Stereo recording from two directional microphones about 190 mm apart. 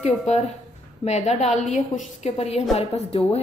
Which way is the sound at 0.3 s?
35° left (ahead or behind).